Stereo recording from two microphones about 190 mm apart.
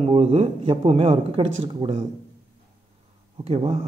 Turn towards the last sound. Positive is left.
turn(degrees=-35)  # may be behind; listen again after turning